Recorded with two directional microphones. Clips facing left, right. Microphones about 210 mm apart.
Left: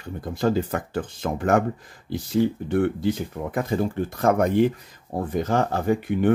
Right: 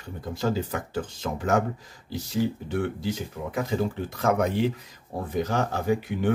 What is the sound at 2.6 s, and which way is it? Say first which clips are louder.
Speech: left 6 dB; 55° left (ahead or behind).